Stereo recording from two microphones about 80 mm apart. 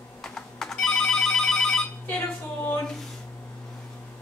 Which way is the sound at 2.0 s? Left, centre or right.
Left.